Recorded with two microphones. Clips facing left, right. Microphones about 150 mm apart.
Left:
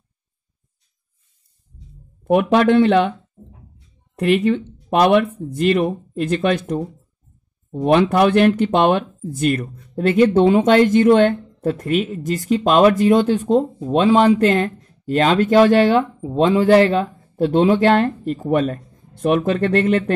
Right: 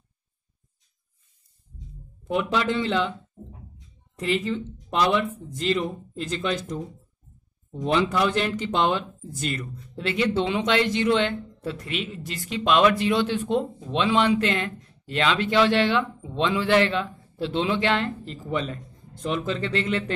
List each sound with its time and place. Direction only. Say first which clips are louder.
2.2 s speech: left 10 dB; 55° left (ahead or behind)